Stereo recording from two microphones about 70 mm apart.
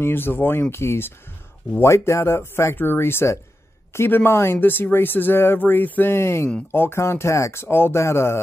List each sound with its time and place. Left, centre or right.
0.0 s speech: left